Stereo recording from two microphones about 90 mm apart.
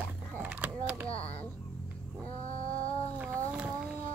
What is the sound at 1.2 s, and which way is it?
Speech, 15° left (ahead or behind).